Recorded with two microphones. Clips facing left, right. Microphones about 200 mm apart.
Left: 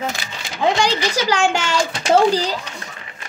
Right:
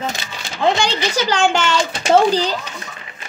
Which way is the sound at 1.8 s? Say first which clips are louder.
Even; 25° right (ahead or behind).